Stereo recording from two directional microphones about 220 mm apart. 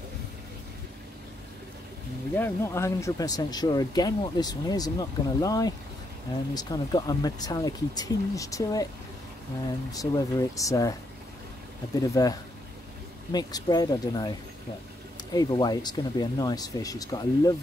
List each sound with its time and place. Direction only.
2.3 s speech: 10° left (ahead or behind)
9.9 s speech: 15° left (ahead or behind)
12.0 s speech: 15° left (ahead or behind)